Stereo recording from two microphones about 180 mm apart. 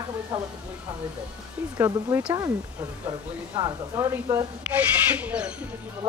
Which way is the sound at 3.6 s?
25° right (ahead or behind).